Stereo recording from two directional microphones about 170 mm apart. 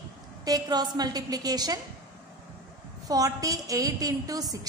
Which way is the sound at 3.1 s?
20° right (ahead or behind).